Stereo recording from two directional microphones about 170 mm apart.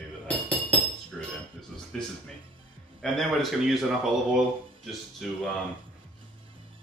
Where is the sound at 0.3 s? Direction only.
10° left (ahead or behind).